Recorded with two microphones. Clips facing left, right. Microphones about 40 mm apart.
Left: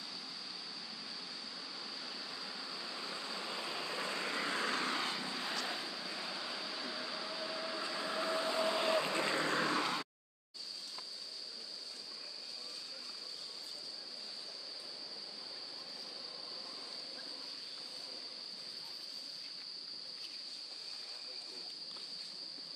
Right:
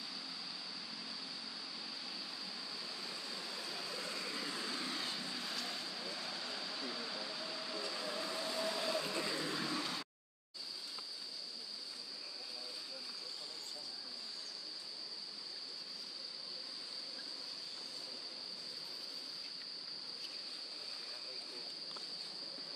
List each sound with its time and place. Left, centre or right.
1.8 s vehicle: centre; by 5.6 s left
5.7 s vehicle: centre; by 9.9 s left